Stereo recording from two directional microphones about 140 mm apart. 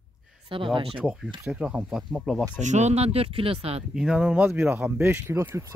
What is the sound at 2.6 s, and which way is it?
Speech, 55° right (ahead or behind).